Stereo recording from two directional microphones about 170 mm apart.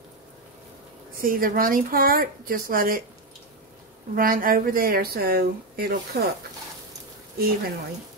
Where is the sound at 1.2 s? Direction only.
55° right (ahead or behind).